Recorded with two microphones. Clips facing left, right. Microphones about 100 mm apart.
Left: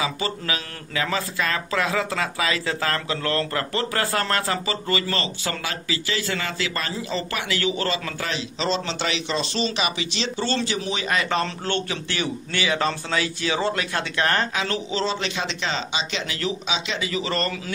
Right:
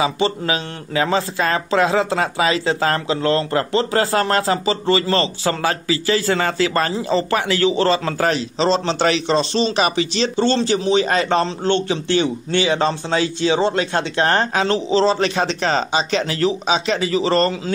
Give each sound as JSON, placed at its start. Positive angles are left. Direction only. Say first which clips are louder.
{"t": 0.0, "sound": "speech", "louder": "right 8 dB", "side_deg": -25}
{"t": 9.8, "sound": "a man's voice", "louder": "right 8 dB", "side_deg": -40}